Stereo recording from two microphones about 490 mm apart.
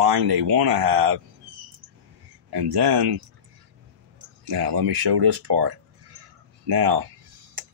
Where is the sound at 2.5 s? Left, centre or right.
Right.